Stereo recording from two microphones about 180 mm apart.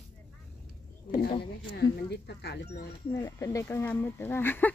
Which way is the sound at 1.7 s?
65° left (ahead or behind).